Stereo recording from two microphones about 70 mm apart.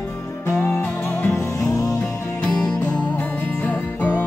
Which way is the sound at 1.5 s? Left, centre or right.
Left.